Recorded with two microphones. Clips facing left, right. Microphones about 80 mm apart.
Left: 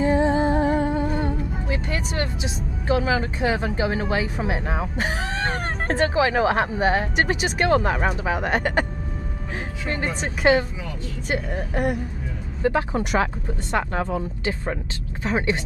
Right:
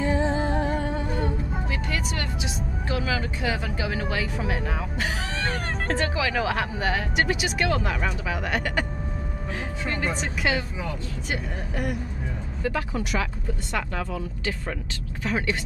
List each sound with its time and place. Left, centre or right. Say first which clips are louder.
0.2 s speech: left 5 dB; centre; by 8.8 s left
9.8 s speech: left 2 dB; left